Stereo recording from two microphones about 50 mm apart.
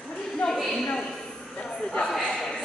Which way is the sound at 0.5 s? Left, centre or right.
Centre.